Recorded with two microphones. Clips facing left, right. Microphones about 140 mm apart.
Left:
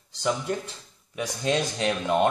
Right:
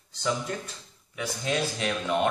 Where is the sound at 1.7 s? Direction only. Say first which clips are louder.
Left 3 dB; 30° left (ahead or behind).